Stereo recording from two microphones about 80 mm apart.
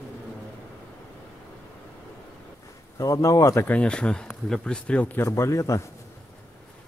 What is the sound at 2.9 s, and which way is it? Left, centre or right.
Speech, left.